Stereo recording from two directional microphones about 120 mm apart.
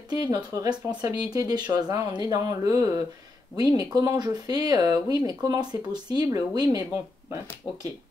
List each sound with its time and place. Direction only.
0.3 s speech: 30° right (ahead or behind)